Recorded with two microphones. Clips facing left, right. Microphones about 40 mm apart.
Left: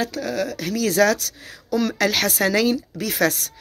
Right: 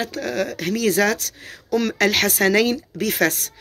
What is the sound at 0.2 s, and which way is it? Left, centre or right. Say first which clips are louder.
Speech: right 1 dB; right.